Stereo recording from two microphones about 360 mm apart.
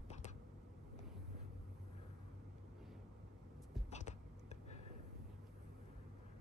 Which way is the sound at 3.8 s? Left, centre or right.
Centre.